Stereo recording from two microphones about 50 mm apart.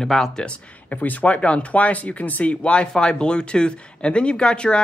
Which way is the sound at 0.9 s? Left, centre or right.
Left.